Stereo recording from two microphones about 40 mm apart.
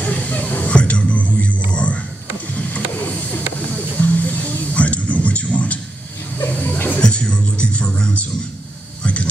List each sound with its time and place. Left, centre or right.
0.0 s music: left
0.7 s music: left
1.7 s a sound: left
2.5 s music: left
6.5 s chuckle: left
7.0 s music: left
9.0 s a sound: left